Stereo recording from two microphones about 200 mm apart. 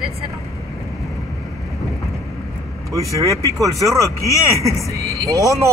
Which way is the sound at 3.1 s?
15° right (ahead or behind).